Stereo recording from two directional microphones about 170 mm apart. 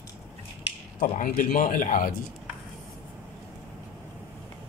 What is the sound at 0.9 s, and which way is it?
Speech, 50° left (ahead or behind).